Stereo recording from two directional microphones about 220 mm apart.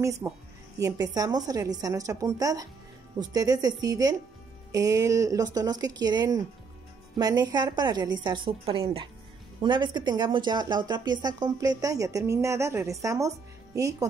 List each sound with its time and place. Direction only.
0.0 s a woman's voice: 15° right (ahead or behind)